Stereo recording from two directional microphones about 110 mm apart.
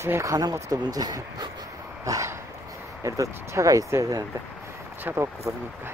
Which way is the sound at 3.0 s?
30° right (ahead or behind).